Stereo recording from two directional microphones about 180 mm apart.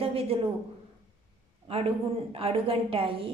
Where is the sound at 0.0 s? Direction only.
30° right (ahead or behind).